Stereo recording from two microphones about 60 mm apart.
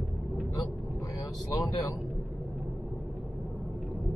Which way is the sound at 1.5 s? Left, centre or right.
Left.